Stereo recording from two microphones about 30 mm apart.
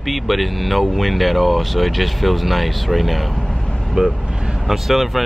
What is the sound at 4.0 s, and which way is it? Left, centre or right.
Speech, right.